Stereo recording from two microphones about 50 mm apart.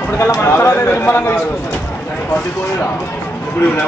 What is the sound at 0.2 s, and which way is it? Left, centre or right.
Speech, left.